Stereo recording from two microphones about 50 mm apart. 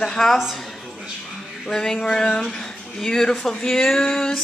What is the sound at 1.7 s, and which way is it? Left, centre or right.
Female singing, centre.